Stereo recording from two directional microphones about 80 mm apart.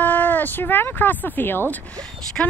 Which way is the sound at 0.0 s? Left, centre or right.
Left.